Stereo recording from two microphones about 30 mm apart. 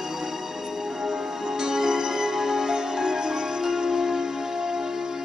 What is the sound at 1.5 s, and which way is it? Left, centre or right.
Music, centre.